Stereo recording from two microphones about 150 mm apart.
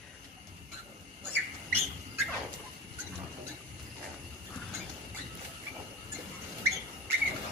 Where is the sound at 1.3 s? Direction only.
15° right (ahead or behind).